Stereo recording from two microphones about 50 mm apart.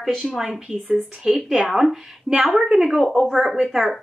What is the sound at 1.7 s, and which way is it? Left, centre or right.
Speech, centre.